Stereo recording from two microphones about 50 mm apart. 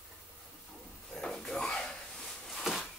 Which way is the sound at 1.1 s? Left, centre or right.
Centre.